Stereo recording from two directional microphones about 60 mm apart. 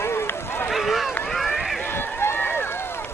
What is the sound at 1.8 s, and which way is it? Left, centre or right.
Run, left.